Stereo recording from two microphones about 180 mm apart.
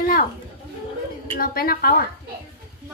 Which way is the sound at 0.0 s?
50° left (ahead or behind).